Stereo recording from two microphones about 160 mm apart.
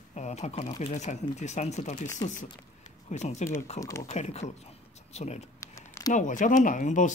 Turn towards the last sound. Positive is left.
turn(degrees=50)  # may be behind; listen again after turning